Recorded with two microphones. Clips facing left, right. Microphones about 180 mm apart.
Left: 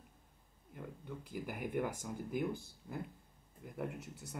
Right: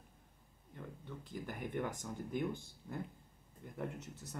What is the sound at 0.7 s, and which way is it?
Speech, 10° left (ahead or behind).